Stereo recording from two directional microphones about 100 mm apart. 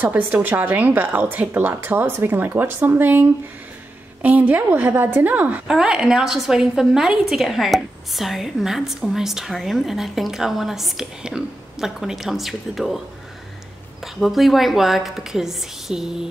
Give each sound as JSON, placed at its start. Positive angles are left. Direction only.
{"t": 0.0, "sound": "a woman's voice", "side_deg": -15}
{"t": 14.0, "sound": "a woman's voice", "side_deg": 0}